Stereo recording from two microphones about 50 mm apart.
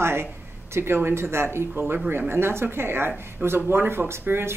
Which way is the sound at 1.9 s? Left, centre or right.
Right.